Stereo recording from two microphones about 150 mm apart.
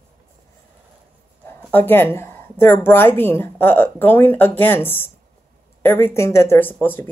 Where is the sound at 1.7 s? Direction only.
15° left (ahead or behind).